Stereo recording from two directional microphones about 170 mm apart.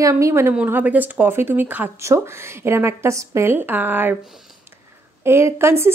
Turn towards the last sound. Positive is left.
turn(degrees=-15)  # may be behind; listen again after turning